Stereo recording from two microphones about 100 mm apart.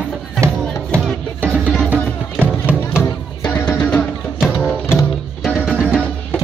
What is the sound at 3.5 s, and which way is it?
Music, 10° left (ahead or behind).